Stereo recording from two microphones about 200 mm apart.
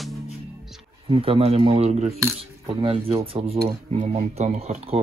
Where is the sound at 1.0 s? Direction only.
30° right (ahead or behind).